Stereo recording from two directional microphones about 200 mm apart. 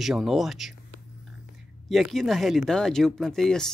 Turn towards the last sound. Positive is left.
turn(degrees=0)  # may be behind; listen again after turning